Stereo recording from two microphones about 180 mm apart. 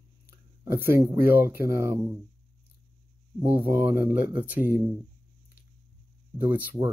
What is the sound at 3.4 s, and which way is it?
Speech, 15° right (ahead or behind).